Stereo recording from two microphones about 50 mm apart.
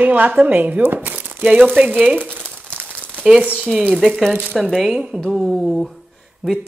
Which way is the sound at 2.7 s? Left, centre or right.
Right.